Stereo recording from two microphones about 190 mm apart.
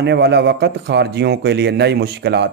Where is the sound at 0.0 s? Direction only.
60° right (ahead or behind).